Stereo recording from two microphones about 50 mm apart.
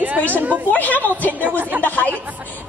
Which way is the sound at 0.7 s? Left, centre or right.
Left.